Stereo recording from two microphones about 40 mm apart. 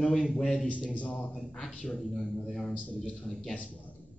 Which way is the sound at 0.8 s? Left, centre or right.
Left.